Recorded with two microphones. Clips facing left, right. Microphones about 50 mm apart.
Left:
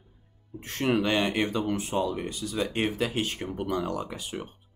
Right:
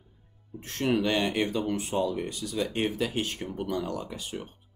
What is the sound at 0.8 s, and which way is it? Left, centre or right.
Speech, centre.